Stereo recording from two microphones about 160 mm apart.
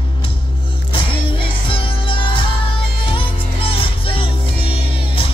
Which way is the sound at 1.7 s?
35° left (ahead or behind).